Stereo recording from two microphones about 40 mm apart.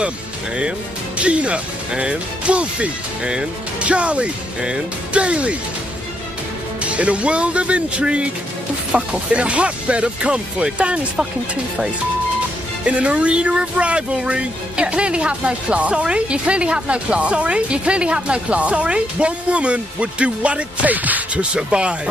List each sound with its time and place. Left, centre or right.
0.6 s speech: right
6.8 s speech: right
12.8 s speech: right
20.9 s speech: right
21.5 s speech: right